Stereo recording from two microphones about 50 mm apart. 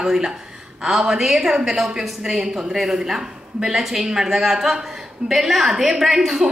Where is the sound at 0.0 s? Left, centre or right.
Centre.